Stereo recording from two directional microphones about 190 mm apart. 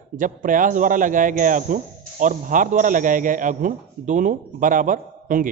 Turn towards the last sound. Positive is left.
turn(degrees=-45)  # may be behind; listen again after turning